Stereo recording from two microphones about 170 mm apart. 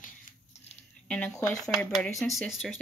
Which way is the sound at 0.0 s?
50° left (ahead or behind).